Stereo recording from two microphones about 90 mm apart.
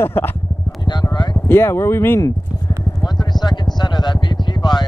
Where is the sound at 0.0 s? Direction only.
25° left (ahead or behind).